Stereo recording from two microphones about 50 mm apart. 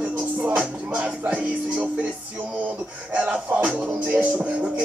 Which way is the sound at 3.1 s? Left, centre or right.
Right.